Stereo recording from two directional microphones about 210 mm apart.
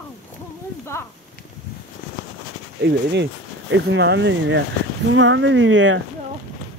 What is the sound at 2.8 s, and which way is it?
Speech, 55° right (ahead or behind).